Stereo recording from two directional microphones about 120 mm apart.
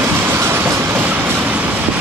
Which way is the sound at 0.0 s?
20° right (ahead or behind).